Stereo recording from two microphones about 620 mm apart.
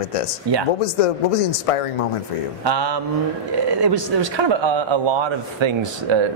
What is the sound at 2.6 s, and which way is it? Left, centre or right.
Speech, right.